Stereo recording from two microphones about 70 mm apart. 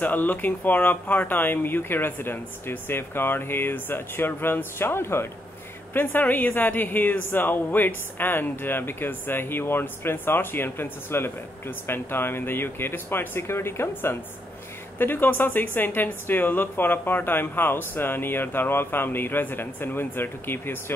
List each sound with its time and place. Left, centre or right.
0.0 s a woman's voice: left